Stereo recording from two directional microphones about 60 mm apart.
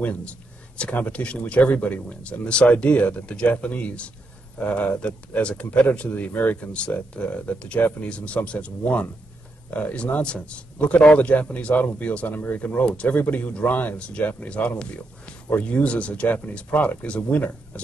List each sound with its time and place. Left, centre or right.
0.0 s speech: left